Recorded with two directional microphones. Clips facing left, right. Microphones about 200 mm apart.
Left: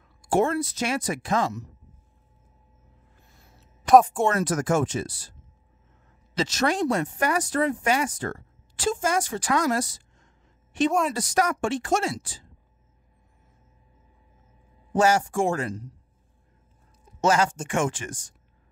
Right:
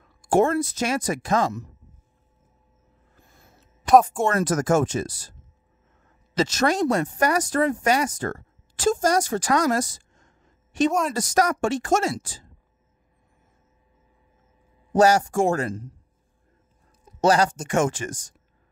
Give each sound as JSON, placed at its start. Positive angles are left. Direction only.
{"t": 0.2, "sound": "speech", "side_deg": -45}
{"t": 3.9, "sound": "speech", "side_deg": -5}
{"t": 4.4, "sound": "speech", "side_deg": -45}
{"t": 6.3, "sound": "speech", "side_deg": -45}
{"t": 10.9, "sound": "speech", "side_deg": 0}
{"t": 11.1, "sound": "speech", "side_deg": -45}
{"t": 14.9, "sound": "speech", "side_deg": -40}
{"t": 17.2, "sound": "speech", "side_deg": -35}